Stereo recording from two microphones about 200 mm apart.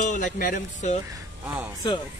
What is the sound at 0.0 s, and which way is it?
Speech, 40° left (ahead or behind).